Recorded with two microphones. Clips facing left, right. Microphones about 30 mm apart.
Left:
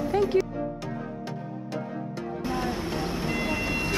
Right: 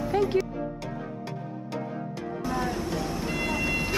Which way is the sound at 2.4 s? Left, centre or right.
Centre.